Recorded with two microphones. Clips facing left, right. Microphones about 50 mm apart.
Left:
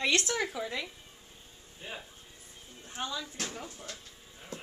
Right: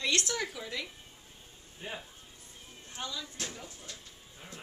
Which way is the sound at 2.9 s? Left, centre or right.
Left.